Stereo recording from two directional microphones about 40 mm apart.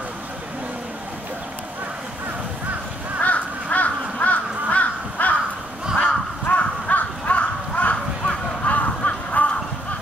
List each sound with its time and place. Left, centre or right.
3.2 s crow: left